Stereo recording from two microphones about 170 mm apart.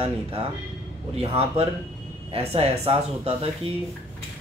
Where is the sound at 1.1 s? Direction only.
35° right (ahead or behind).